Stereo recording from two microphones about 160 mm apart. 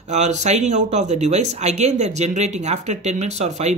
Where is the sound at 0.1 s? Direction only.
45° right (ahead or behind).